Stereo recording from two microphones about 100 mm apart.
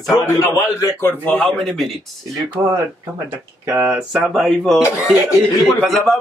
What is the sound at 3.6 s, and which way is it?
Speech, 15° right (ahead or behind).